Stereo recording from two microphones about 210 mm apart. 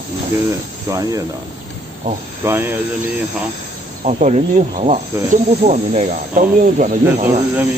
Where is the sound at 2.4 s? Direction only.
10° right (ahead or behind).